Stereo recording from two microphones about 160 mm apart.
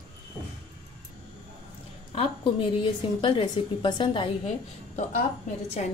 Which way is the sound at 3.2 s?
30° left (ahead or behind).